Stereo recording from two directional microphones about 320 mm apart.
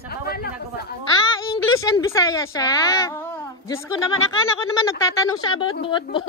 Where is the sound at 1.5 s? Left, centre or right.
Centre.